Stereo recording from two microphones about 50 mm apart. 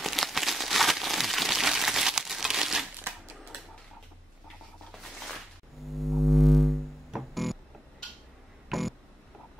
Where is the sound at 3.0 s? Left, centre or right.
Right.